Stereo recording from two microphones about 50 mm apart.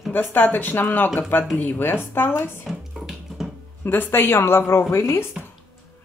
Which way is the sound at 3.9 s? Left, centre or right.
Left.